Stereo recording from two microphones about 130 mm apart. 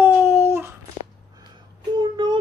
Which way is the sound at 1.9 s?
35° right (ahead or behind).